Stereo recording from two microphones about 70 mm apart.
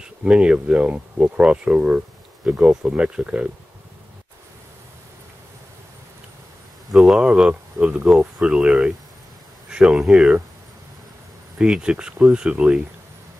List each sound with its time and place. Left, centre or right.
0.0 s speech: centre
6.9 s speech: centre
7.2 s speech: centre
11.5 s speech: centre